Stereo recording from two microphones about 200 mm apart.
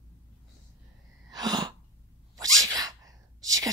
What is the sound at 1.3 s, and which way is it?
Sneeze, 20° right (ahead or behind).